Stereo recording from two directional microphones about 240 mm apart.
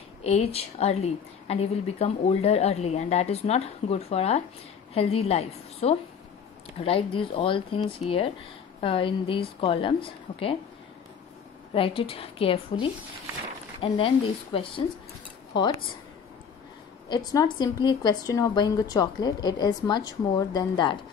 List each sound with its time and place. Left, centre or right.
0.2 s a woman's voice: left
11.7 s a woman's voice: left
13.7 s a woman's voice: left
17.1 s a woman's voice: centre